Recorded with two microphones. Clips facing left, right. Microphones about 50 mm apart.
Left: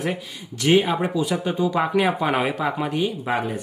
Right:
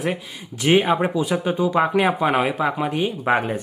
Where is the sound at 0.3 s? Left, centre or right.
Centre.